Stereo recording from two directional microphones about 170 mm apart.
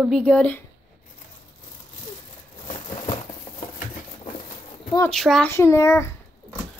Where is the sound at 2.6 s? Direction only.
30° left (ahead or behind).